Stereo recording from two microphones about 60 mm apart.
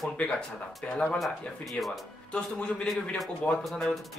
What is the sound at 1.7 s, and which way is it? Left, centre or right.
Speech, centre.